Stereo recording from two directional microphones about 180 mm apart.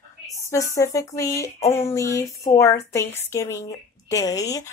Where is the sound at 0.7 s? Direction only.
15° left (ahead or behind).